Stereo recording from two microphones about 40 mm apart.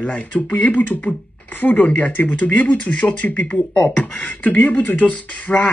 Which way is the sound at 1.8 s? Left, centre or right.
Left.